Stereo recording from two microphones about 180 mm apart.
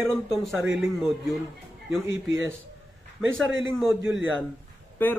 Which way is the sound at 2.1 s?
90° right.